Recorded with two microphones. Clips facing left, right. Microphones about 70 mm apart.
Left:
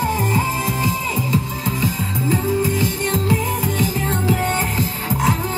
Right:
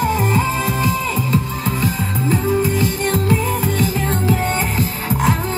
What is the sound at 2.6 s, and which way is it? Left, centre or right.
Music, right.